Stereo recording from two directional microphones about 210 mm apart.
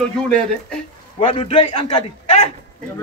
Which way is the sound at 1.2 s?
25° left (ahead or behind).